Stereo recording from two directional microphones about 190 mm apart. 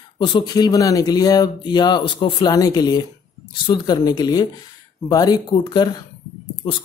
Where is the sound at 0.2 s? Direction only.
25° left (ahead or behind).